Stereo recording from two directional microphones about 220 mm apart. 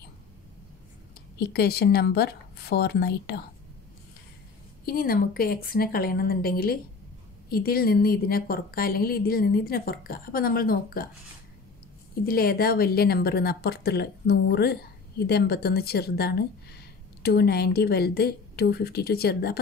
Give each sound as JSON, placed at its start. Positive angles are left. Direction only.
{"t": 1.4, "sound": "a woman's voice", "side_deg": 45}
{"t": 4.8, "sound": "a woman's voice", "side_deg": 40}
{"t": 12.3, "sound": "a woman's voice", "side_deg": 45}